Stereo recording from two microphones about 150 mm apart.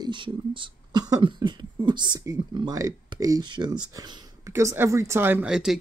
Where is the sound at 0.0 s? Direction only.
35° right (ahead or behind).